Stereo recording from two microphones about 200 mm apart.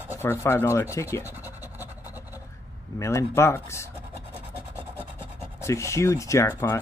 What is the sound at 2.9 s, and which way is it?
Speech, 15° left (ahead or behind).